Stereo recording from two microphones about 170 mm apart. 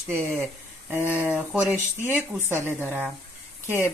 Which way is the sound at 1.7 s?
15° left (ahead or behind).